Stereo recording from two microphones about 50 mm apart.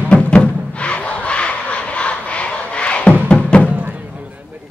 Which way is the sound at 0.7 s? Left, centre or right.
Left.